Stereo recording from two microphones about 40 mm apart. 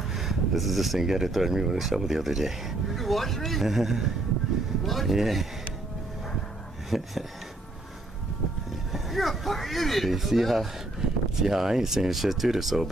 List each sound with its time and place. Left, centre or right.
0.1 s speech: centre
6.9 s speech: centre
8.9 s speech: centre